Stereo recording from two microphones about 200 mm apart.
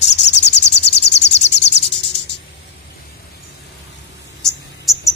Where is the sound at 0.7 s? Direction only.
60° left (ahead or behind).